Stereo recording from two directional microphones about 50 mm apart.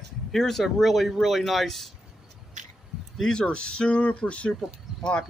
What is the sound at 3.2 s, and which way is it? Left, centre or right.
Speech, centre.